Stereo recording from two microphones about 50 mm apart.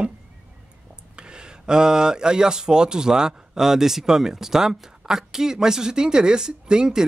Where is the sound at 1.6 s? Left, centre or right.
Centre.